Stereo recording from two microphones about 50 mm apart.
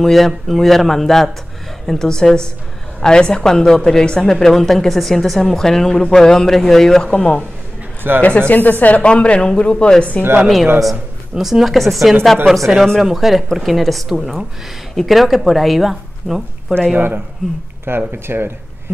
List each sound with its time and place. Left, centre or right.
0.0 s a woman's voice: centre
7.2 s speech: left
10.4 s a woman's voice: centre
16.9 s speech: right